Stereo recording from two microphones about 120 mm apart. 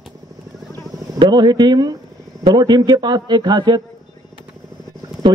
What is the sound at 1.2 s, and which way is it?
A man's voice, 35° right (ahead or behind).